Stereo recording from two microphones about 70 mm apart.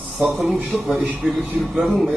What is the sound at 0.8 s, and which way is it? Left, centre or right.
A man's voice, centre.